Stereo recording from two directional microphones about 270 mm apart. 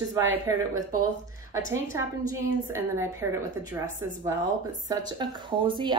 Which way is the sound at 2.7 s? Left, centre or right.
Centre.